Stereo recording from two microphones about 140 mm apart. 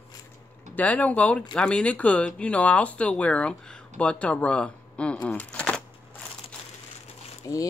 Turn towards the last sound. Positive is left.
turn(degrees=20)  # may be behind; listen again after turning